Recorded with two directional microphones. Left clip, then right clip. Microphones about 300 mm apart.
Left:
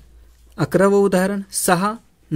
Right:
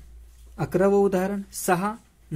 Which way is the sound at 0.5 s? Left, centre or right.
Left.